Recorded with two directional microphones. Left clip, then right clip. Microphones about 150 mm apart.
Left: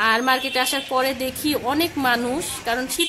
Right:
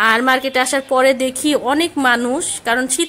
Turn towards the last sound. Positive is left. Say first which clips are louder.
# right 6 dB
turn(degrees=-25)  # may be behind; listen again after turning